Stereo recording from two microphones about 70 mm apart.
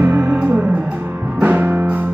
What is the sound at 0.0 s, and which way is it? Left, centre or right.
Music, right.